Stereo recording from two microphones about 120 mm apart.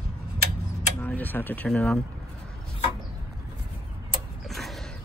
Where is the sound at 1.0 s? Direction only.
15° left (ahead or behind).